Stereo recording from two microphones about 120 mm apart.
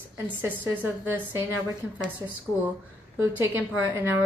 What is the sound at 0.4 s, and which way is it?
Speech, 15° right (ahead or behind).